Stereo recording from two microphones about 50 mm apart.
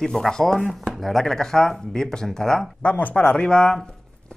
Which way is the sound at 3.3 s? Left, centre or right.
Centre.